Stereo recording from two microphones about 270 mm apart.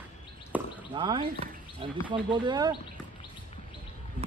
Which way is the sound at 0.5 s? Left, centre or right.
Centre.